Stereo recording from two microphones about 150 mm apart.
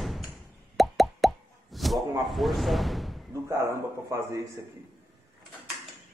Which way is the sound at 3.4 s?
20° right (ahead or behind).